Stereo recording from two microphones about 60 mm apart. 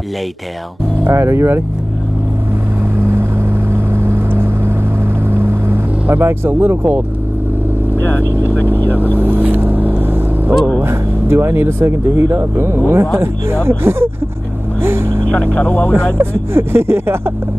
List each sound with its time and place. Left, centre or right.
1.0 s speech: right
3.7 s vehicle: right
9.2 s vehicle: right
10.8 s speech: right
14.8 s vehicle: right
15.3 s speech: left
16.2 s speech: right